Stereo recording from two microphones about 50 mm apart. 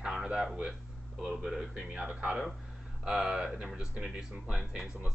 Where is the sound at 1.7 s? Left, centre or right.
Right.